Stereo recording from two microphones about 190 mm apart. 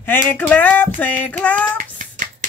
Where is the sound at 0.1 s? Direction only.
10° left (ahead or behind).